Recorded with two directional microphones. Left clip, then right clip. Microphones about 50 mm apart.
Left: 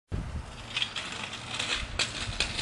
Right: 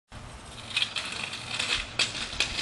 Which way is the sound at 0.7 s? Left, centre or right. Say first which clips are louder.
Right 3 dB; right.